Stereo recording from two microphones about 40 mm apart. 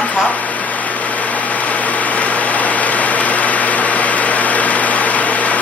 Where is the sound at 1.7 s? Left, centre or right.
Left.